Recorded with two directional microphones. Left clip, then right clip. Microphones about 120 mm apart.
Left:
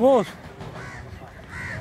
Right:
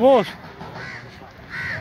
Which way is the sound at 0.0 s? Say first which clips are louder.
Right 3 dB; 15° left (ahead or behind).